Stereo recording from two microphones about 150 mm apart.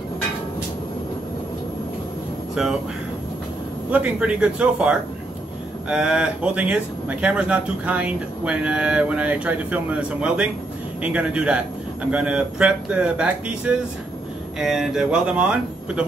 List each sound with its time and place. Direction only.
3.9 s speech: 10° right (ahead or behind)